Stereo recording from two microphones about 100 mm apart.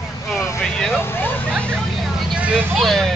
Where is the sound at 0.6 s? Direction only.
5° left (ahead or behind).